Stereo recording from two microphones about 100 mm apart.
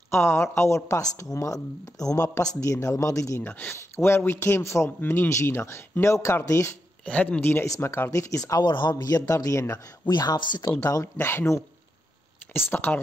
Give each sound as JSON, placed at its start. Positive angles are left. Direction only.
{"t": 0.1, "sound": "speech", "side_deg": 25}
{"t": 3.4, "sound": "speech", "side_deg": 20}
{"t": 7.1, "sound": "speech", "side_deg": 15}
{"t": 7.6, "sound": "speech", "side_deg": 30}
{"t": 9.1, "sound": "speech", "side_deg": 35}
{"t": 10.0, "sound": "speech", "side_deg": 40}
{"t": 11.1, "sound": "speech", "side_deg": 25}